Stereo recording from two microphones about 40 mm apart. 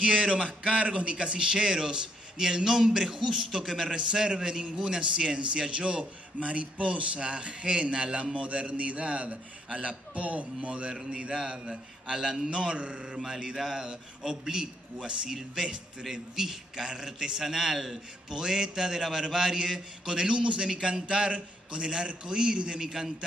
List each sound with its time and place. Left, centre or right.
0.0 s a man's voice: right; by 3.9 s centre
3.9 s a man's voice: centre
7.2 s a man's voice: right
13.2 s a man's voice: centre